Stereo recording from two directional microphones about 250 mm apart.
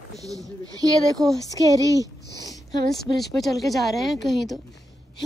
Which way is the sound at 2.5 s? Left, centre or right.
Centre.